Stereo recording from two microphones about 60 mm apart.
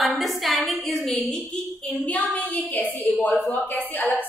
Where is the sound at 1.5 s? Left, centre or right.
Centre.